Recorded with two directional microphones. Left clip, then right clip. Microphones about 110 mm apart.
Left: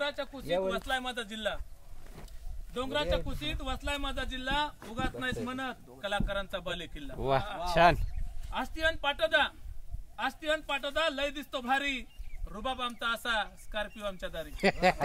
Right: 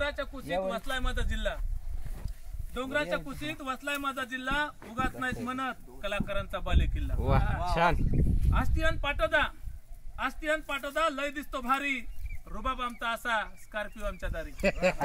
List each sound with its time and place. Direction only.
0.0 s a sound: 10° right (ahead or behind)
0.7 s speech: 5° right (ahead or behind)
2.7 s speech: 5° left (ahead or behind)
7.2 s speech: 40° left (ahead or behind)
7.4 s speech: centre (ahead or behind)
7.7 s speech: 40° left (ahead or behind)
8.5 s speech: centre (ahead or behind)
14.5 s speech: 55° left (ahead or behind)